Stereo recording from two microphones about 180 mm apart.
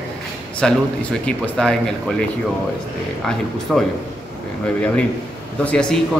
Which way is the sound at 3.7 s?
Centre (ahead or behind).